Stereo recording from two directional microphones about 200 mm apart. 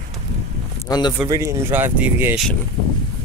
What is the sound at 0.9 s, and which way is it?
Speech, 20° left (ahead or behind).